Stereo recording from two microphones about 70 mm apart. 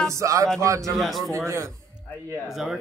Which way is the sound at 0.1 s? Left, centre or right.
Right.